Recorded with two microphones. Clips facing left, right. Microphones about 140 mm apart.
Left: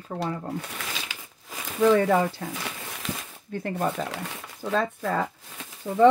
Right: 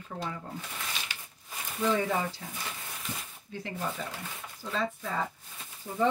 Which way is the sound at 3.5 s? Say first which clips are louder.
Left 8 dB; 55° left (ahead or behind).